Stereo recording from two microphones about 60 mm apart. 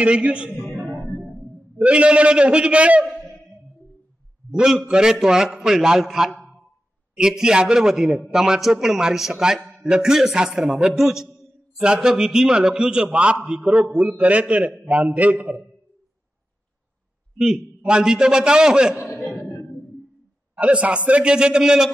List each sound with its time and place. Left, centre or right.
0.0 s a man's voice: centre
1.8 s a man's voice: centre
4.5 s a man's voice: centre
17.4 s a man's voice: centre
20.5 s a man's voice: right